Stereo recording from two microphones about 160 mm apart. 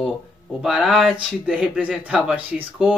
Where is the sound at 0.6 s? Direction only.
5° right (ahead or behind).